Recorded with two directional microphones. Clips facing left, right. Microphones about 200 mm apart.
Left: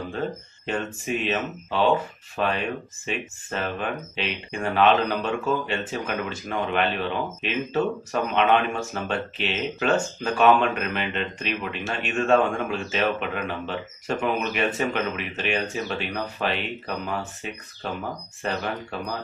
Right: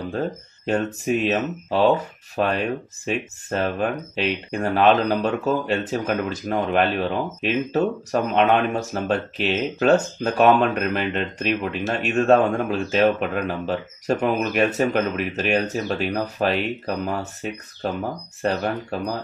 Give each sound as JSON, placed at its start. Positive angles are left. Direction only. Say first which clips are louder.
{"t": 0.1, "sound": "speech", "louder": "right 3 dB", "side_deg": -40}